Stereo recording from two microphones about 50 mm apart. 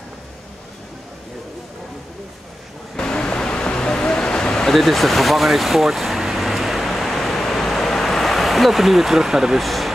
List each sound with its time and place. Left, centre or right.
3.0 s vehicle: centre
4.7 s vehicle: centre